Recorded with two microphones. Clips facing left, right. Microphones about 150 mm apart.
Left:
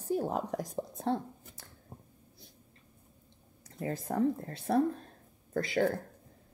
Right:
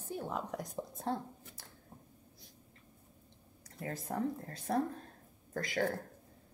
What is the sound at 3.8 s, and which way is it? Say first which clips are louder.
Speech: left 6 dB; 30° left (ahead or behind).